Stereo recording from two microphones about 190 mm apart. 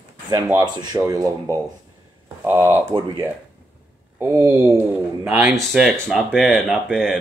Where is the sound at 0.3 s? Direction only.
20° right (ahead or behind).